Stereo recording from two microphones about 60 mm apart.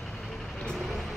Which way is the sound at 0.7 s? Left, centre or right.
Centre.